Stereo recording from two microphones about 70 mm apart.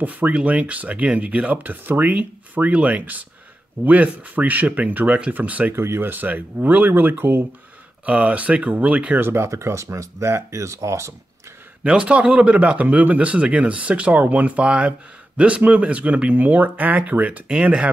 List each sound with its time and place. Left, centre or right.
0.0 s speech: right
5.8 s speech: right
8.0 s speech: centre
9.3 s speech: right
11.8 s speech: centre